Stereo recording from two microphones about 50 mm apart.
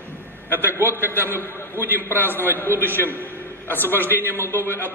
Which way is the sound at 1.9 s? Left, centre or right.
Left.